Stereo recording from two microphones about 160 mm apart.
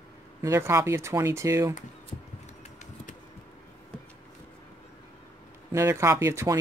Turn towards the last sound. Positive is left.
turn(degrees=-20)  # may be behind; listen again after turning